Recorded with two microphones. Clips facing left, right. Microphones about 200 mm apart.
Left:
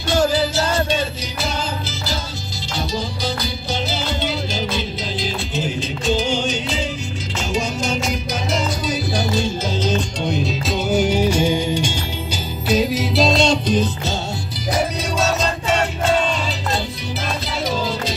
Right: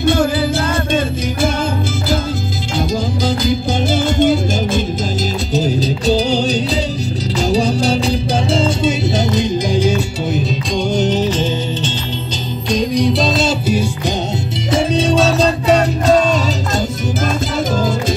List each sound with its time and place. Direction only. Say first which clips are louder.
0.0 s music: right 3 dB; 55° right (ahead or behind)
3.4 s music: right 9 dB; 50° right (ahead or behind)
5.5 s music: right 8 dB; 40° right (ahead or behind); by 14.1 s 10° right (ahead or behind)
14.7 s music: right 7 dB; 25° right (ahead or behind)